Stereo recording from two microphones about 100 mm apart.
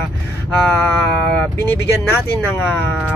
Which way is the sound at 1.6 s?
25° left (ahead or behind).